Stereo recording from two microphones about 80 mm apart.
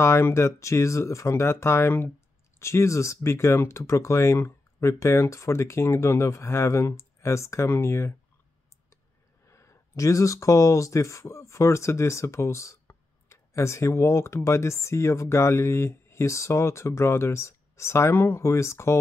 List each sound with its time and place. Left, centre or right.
0.0 s speech: left
9.5 s speech: left